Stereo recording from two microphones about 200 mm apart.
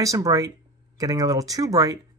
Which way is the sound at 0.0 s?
15° right (ahead or behind).